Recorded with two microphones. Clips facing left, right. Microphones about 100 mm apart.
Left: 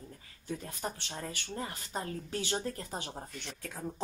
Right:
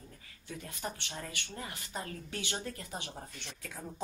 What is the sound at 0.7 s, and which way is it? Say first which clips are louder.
Speech: left 2 dB; 35° left (ahead or behind).